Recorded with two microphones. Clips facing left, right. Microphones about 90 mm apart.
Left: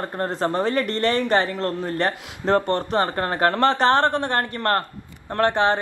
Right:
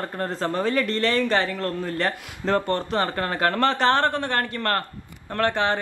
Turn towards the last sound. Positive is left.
turn(degrees=20)  # may be behind; listen again after turning